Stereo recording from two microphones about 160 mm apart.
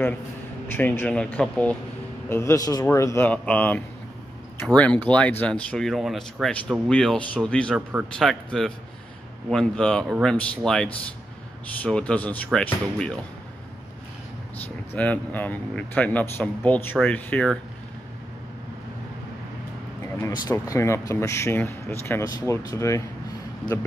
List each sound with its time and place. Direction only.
0.7 s speech: 15° left (ahead or behind)
14.6 s speech: 10° left (ahead or behind)
20.4 s speech: 20° left (ahead or behind)